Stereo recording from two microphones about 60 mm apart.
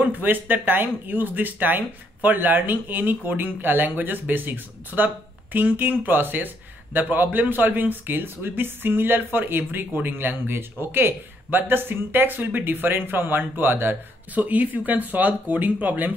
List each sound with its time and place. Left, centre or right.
0.0 s speech: right